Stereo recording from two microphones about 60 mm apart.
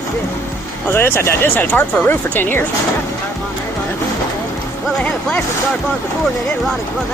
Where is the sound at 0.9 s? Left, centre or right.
Left.